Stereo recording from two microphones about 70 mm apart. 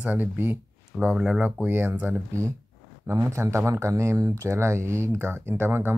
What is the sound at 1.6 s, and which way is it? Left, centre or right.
Speech, right.